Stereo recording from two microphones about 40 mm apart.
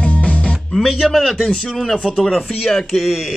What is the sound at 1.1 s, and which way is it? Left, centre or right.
Speech, centre.